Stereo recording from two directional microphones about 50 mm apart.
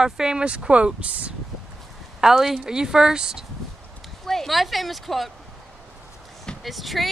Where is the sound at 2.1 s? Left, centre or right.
Centre.